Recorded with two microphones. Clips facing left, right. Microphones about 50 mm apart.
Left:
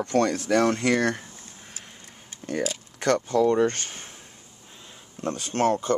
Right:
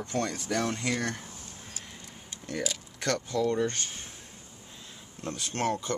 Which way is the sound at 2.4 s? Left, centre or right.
Left.